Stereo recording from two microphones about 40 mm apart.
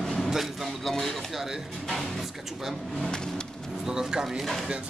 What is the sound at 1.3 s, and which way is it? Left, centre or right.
Speech, centre.